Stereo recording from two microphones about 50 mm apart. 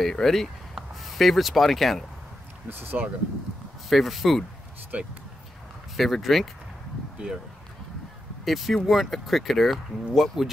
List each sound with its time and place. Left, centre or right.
0.0 s speech: centre
2.7 s speech: right
3.9 s speech: centre
4.9 s speech: right
5.9 s speech: centre
8.5 s speech: centre